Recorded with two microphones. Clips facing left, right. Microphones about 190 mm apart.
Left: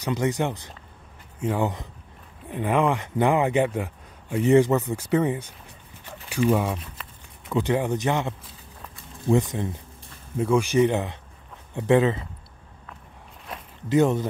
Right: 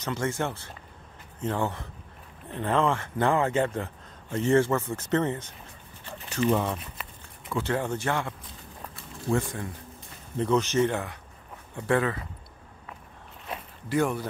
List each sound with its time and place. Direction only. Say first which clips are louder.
0.0 s speech: left 5 dB; 15° left (ahead or behind)
6.0 s dog: left 3 dB; 10° left (ahead or behind)
7.5 s speech: left 5 dB; 15° left (ahead or behind)
10.3 s speech: left 3 dB; 10° left (ahead or behind)
13.8 s speech: left 6 dB; 20° left (ahead or behind)